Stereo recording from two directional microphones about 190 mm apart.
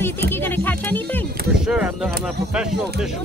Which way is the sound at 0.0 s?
10° left (ahead or behind).